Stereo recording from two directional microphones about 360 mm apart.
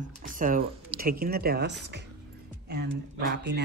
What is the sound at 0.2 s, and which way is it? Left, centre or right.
Speech, right.